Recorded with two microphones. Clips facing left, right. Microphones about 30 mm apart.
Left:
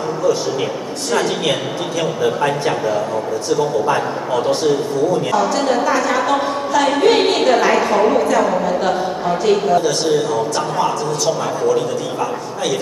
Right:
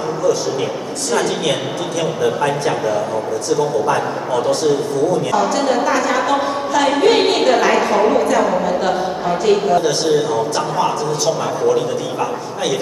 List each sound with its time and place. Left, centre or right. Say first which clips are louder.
1.1 s a man's voice: even; centre
3.8 s a man's voice: even; left
5.6 s a woman's voice: even; centre